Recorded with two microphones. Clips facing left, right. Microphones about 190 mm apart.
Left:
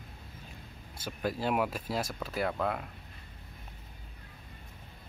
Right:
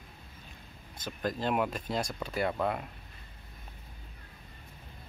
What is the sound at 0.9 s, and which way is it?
Speech, 10° left (ahead or behind).